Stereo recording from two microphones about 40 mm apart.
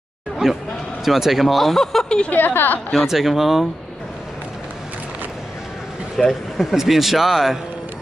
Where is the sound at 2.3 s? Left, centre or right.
Left.